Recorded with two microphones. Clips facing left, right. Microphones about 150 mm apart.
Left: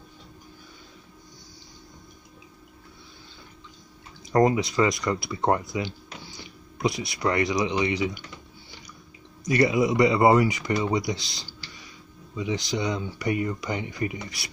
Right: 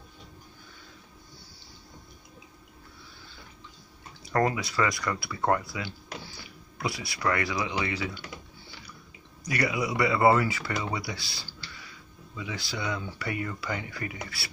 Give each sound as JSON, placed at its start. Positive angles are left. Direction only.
{"t": 4.3, "sound": "speech", "side_deg": 20}
{"t": 9.4, "sound": "speech", "side_deg": 25}